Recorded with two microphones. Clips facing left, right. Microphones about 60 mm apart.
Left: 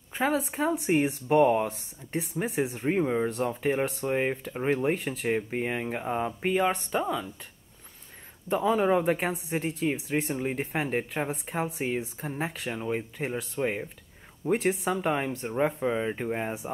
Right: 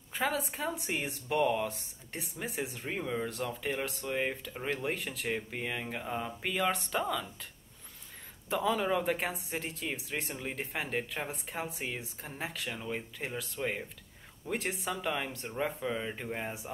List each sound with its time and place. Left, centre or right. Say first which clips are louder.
0.1 s speech: left 5 dB; left
6.9 s speech: left 4 dB; centre
8.5 s speech: left 6 dB; left